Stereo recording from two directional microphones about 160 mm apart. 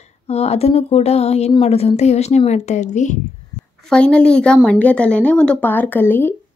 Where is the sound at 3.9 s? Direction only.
5° left (ahead or behind).